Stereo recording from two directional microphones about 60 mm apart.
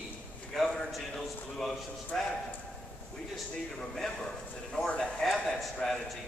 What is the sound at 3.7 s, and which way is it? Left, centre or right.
A man's voice, centre.